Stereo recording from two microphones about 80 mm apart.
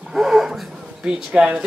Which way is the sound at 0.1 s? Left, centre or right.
Centre.